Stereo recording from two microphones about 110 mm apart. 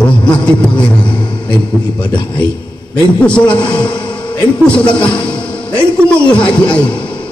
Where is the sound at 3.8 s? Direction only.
45° left (ahead or behind).